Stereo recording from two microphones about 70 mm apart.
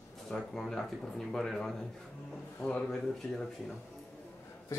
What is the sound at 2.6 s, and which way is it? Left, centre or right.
Speech, centre.